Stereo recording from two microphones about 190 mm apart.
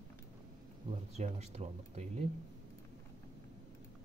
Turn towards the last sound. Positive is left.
turn(degrees=-35)  # may be behind; listen again after turning